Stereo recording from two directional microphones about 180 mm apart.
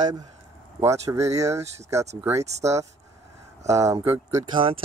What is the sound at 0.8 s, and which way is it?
Speech, 15° right (ahead or behind).